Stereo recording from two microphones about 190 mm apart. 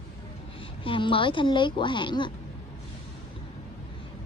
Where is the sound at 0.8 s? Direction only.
25° left (ahead or behind).